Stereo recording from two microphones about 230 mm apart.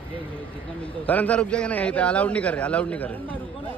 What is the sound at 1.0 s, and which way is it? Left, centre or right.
A man's voice, centre.